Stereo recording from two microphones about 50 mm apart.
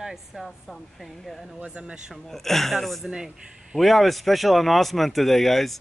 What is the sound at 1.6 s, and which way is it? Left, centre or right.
Speech, right.